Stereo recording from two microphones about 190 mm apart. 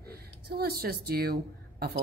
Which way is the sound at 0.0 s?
55° right (ahead or behind).